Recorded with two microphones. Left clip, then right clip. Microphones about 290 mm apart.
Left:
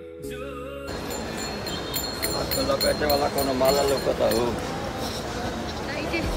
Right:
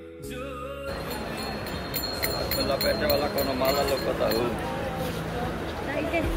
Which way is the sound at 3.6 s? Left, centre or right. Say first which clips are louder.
Left 5 dB; left.